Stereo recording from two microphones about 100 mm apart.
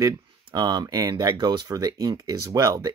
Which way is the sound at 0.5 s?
45° right (ahead or behind).